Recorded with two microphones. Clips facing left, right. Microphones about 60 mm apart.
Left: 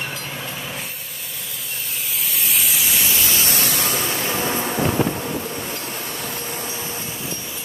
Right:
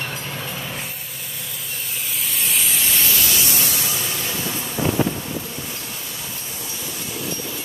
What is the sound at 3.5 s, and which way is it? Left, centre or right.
Spray, left.